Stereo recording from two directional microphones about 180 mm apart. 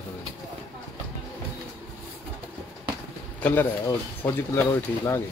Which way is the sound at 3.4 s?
10° left (ahead or behind).